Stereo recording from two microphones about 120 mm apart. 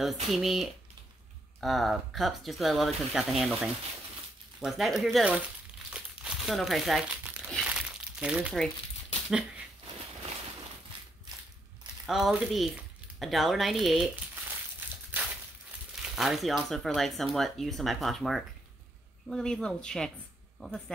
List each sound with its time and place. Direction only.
0.0 s speech: centre (ahead or behind)
5.9 s crumpling: 5° right (ahead or behind)
12.1 s speech: 5° right (ahead or behind)
15.1 s a sound: 15° right (ahead or behind)
16.0 s a woman's voice: centre (ahead or behind)